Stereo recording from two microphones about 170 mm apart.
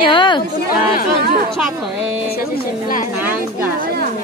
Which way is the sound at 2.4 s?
55° left (ahead or behind).